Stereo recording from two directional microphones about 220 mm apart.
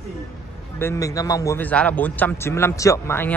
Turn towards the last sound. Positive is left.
turn(degrees=10)  # may be behind; listen again after turning